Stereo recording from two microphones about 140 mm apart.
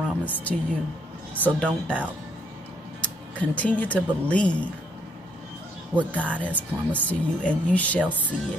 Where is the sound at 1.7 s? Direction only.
10° right (ahead or behind).